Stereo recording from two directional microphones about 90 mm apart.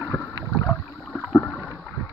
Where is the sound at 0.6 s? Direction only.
Centre (ahead or behind).